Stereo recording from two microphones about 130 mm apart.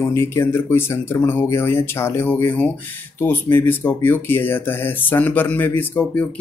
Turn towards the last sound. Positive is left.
turn(degrees=15)  # may be behind; listen again after turning